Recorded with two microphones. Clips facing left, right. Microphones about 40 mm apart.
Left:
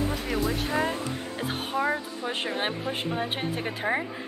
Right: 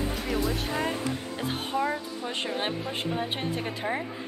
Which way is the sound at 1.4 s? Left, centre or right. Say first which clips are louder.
Even; centre.